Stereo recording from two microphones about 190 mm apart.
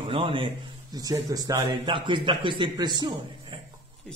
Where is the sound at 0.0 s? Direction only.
30° right (ahead or behind).